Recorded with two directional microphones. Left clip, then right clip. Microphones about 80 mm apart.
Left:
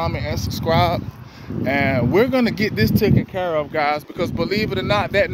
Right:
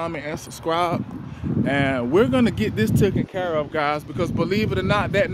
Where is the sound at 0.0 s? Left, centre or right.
Right.